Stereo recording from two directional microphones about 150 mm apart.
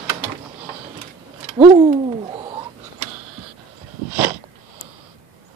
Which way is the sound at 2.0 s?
35° right (ahead or behind).